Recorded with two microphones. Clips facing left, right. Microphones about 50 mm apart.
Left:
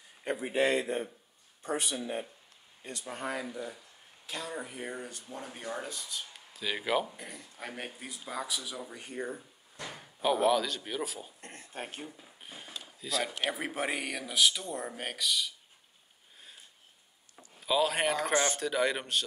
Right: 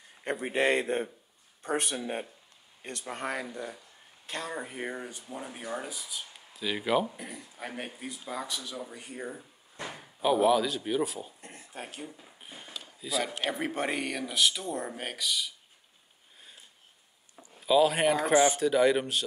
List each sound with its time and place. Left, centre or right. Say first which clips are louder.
0.2 s speech: right 1 dB; right
4.5 s speech: right 3 dB; right
4.9 s speech: right 2 dB; centre
9.9 s speech: right 3 dB; centre
11.7 s speech: left 1 dB; left
12.2 s speech: right 1 dB; centre
17.6 s speech: right 5 dB; centre